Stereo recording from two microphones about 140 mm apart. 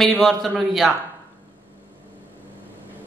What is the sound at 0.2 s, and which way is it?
Speech, centre (ahead or behind).